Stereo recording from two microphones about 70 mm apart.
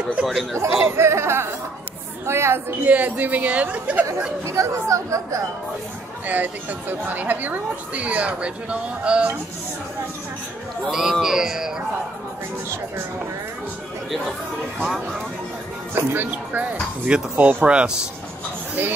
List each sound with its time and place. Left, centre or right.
0.1 s speech: centre
0.6 s speech: right
2.8 s speech: right
4.5 s speech: right
6.2 s speech: right
10.9 s speech: centre
15.9 s speech: right; by 17.9 s centre